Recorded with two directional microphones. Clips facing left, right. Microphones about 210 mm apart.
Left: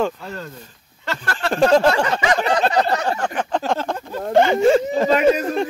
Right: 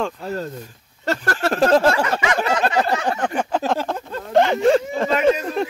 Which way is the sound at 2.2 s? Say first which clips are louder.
Left 2 dB; 35° left (ahead or behind).